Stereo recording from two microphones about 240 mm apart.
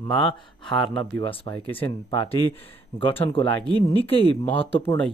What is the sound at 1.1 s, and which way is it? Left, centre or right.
Speech, centre.